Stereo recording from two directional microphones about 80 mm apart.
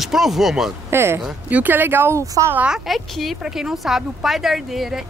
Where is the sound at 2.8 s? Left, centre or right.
Centre.